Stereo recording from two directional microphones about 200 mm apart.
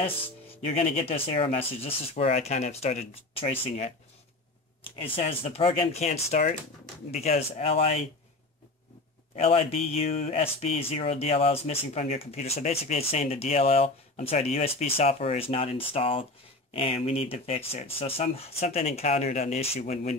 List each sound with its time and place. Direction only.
0.7 s speech: 30° left (ahead or behind)
5.0 s speech: 30° left (ahead or behind)
9.3 s speech: 30° left (ahead or behind)